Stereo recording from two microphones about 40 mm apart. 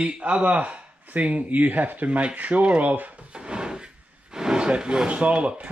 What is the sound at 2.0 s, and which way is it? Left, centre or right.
Speech, right.